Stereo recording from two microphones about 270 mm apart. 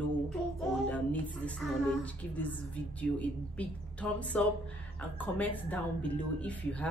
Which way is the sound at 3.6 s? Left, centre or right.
Centre.